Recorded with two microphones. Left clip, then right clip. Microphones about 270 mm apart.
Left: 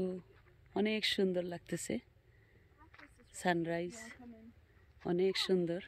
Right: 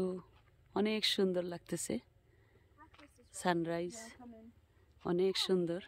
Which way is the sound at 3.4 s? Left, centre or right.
Centre.